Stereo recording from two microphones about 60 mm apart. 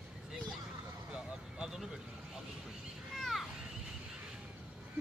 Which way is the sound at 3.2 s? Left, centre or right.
Centre.